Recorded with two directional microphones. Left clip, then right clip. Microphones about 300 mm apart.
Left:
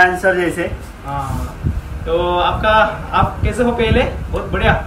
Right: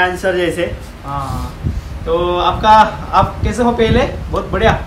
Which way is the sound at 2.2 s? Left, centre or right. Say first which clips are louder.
Right 4 dB; centre.